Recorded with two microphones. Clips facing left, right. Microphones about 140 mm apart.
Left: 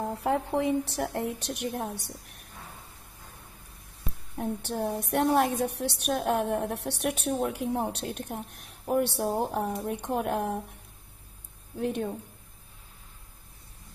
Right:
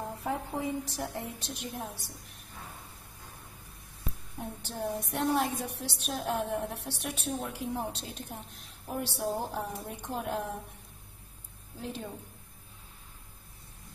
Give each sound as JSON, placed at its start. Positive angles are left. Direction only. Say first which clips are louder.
{"t": 0.2, "sound": "a woman's voice", "louder": "left 7 dB", "side_deg": 70}
{"t": 4.4, "sound": "a woman's voice", "louder": "left 7 dB", "side_deg": 60}
{"t": 11.8, "sound": "a woman's voice", "louder": "left 9 dB", "side_deg": 60}